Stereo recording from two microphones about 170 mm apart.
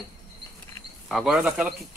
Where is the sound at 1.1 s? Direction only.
5° right (ahead or behind).